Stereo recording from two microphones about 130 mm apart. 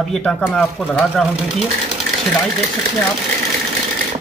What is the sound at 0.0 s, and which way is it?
Speech, 5° left (ahead or behind).